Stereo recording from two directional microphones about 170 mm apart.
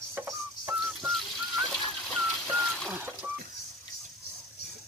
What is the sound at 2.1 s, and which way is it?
Bird, centre (ahead or behind).